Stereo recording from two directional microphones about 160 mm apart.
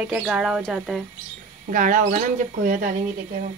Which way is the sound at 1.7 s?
55° right (ahead or behind).